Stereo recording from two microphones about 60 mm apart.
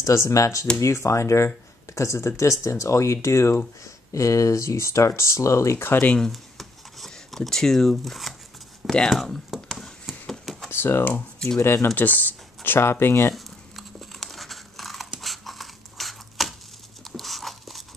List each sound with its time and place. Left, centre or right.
0.0 s speech: left
5.8 s speech: left
6.1 s speech: centre
9.1 s a sound: centre
10.7 s speech: left
11.9 s speech: left
13.3 s crumpling: centre
15.1 s a sound: centre